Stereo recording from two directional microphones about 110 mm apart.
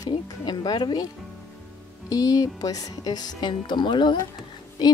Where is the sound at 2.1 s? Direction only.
35° left (ahead or behind).